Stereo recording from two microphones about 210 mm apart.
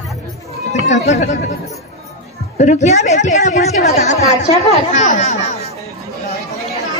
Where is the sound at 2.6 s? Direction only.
35° left (ahead or behind).